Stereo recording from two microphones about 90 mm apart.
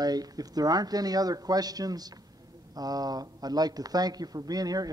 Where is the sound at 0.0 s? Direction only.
45° right (ahead or behind).